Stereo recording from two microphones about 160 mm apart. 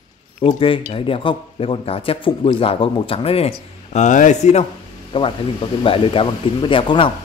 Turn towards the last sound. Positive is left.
turn(degrees=30)  # may be behind; listen again after turning